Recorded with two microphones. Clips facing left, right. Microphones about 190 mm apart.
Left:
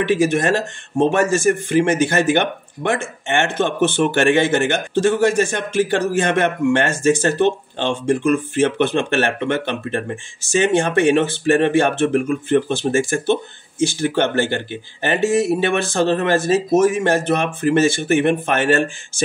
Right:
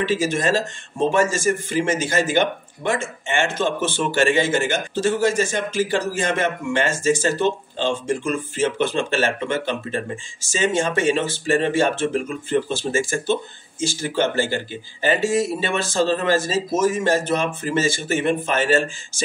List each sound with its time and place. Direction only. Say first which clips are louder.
0.0 s speech: left 4 dB; 60° left (ahead or behind)